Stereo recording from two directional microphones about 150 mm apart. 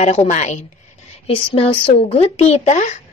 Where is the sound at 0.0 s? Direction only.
45° left (ahead or behind).